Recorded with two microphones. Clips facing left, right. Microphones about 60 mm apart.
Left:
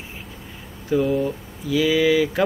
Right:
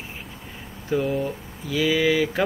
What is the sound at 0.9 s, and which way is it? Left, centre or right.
Speech, centre.